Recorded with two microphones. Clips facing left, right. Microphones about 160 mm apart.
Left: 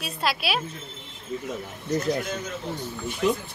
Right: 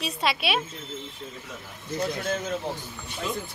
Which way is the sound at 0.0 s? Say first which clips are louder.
Right 1 dB; centre (ahead or behind).